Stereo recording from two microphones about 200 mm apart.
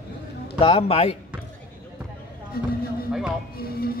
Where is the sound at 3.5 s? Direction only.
50° left (ahead or behind).